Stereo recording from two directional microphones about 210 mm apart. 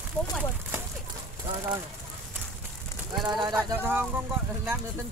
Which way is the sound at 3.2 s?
20° right (ahead or behind).